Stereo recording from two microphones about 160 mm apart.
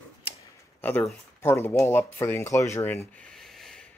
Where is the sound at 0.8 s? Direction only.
10° left (ahead or behind).